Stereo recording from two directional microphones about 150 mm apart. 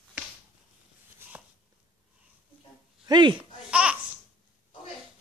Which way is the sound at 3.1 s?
30° right (ahead or behind).